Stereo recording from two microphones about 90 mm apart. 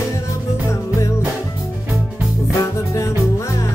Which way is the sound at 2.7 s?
35° left (ahead or behind).